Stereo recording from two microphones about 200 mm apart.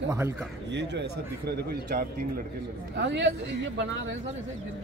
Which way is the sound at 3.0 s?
60° right (ahead or behind).